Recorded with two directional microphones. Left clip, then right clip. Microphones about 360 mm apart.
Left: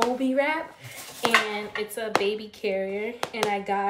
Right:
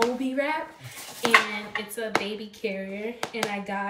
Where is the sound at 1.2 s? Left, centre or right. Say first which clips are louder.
Right 1 dB; centre.